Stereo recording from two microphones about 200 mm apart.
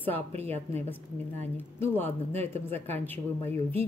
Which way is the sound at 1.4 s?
10° left (ahead or behind).